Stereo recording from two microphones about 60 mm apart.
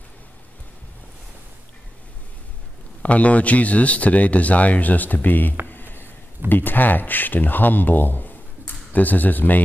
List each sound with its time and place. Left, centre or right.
3.0 s speech: left
5.7 s a sound: left
6.5 s speech: left